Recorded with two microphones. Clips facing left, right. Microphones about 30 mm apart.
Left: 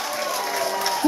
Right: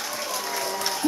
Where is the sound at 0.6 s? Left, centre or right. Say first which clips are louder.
Left 4 dB; centre.